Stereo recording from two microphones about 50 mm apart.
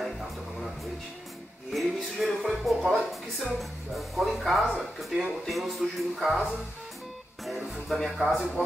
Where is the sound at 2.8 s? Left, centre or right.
Centre.